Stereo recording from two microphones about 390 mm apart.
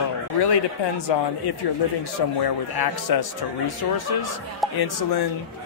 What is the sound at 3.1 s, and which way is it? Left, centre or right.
A man's voice, left.